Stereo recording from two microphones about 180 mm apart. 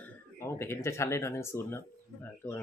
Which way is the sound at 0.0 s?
15° left (ahead or behind).